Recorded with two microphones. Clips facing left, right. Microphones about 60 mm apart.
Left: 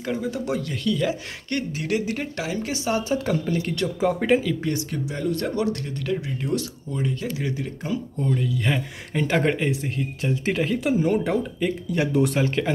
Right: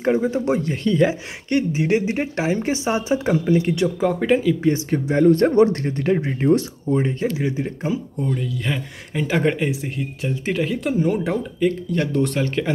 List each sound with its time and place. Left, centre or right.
0.0 s speech: right
4.0 s speech: centre
4.8 s speech: right
8.2 s speech: centre